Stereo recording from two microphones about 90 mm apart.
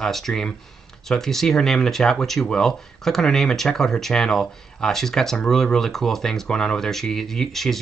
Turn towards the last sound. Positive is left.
turn(degrees=5)  # may be behind; listen again after turning